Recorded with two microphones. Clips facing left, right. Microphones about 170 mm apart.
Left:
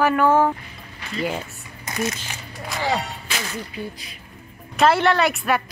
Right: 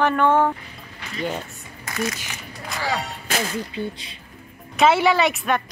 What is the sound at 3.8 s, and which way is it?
Speech, 25° right (ahead or behind).